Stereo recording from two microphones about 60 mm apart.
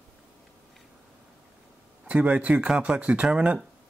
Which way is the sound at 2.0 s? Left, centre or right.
Right.